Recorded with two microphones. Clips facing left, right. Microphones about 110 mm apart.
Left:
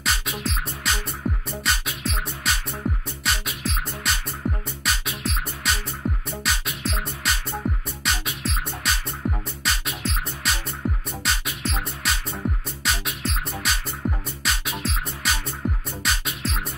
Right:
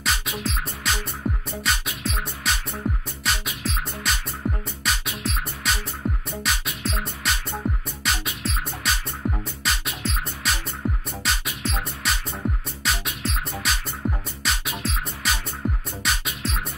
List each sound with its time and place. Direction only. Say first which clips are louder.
0.0 s music: even; centre (ahead or behind)